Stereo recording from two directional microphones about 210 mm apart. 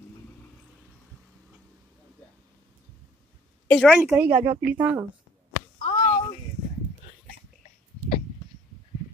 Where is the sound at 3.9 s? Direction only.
10° right (ahead or behind).